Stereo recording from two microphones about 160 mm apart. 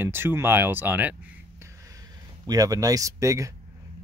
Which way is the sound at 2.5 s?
20° right (ahead or behind).